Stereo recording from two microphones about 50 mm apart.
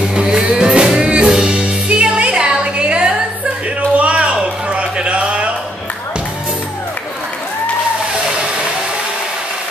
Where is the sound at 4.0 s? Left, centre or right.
Right.